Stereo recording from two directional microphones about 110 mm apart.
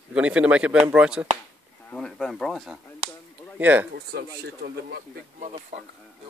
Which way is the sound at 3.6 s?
15° right (ahead or behind).